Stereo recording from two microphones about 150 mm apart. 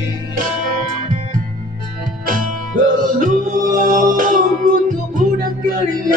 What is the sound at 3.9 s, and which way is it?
Music, 65° right (ahead or behind).